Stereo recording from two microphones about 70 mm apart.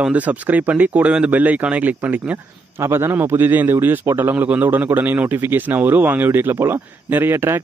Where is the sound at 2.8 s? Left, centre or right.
Right.